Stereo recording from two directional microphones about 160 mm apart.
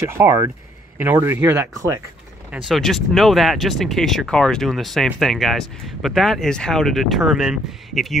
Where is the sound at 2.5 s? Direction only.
Centre (ahead or behind).